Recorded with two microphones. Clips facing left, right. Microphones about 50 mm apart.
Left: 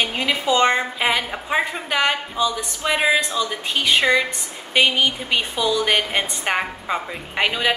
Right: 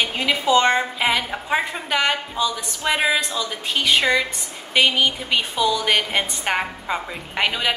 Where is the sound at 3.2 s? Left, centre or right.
Left.